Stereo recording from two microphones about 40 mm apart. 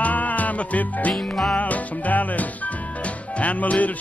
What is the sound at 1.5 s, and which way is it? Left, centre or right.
Music, left.